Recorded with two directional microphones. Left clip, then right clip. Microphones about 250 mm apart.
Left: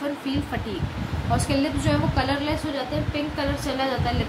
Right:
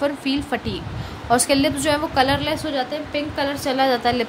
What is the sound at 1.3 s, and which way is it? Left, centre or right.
A woman's voice, right.